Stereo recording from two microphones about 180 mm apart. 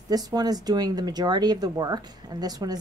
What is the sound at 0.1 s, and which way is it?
A woman's voice, 20° right (ahead or behind).